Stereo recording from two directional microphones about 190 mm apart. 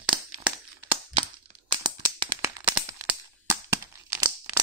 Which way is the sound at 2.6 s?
15° right (ahead or behind).